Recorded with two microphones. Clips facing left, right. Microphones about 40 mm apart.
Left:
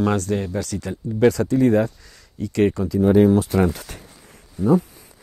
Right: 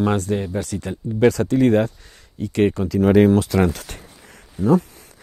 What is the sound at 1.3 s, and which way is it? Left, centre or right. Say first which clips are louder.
Speech: right 1 dB; right.